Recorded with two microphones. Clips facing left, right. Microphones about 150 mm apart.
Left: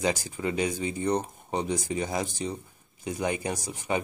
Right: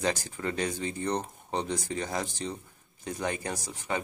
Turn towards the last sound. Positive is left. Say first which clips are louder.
# left 3 dB
turn(degrees=15)  # may be behind; listen again after turning